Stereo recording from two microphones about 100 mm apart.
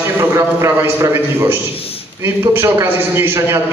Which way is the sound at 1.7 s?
70° left (ahead or behind).